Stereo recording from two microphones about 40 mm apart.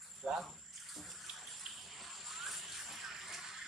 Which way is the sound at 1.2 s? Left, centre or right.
Centre.